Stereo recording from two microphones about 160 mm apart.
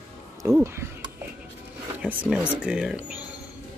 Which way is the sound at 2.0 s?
5° right (ahead or behind).